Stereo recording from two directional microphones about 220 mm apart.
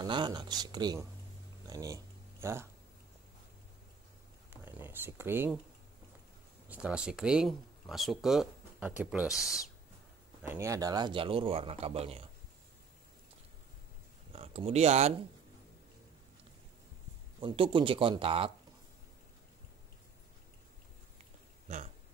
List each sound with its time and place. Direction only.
0.0 s speech: 20° right (ahead or behind)
4.5 s a sound: 10° right (ahead or behind)
6.7 s speech: 5° right (ahead or behind)
10.4 s speech: 10° right (ahead or behind); by 12.3 s 25° right (ahead or behind)
14.3 s speech: 25° right (ahead or behind)
17.4 s speech: 20° right (ahead or behind)